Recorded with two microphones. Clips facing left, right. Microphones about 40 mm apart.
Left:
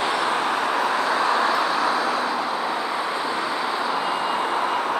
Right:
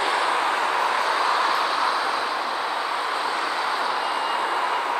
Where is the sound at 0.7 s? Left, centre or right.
Centre.